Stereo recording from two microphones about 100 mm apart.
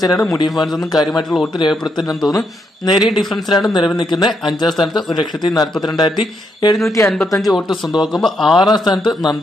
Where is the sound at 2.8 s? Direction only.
45° left (ahead or behind).